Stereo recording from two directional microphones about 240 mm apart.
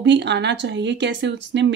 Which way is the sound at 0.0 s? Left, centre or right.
Right.